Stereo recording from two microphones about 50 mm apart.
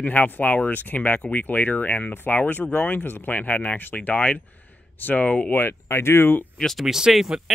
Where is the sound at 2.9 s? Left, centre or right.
Left.